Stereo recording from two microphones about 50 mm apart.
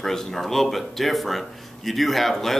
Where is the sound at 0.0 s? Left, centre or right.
Centre.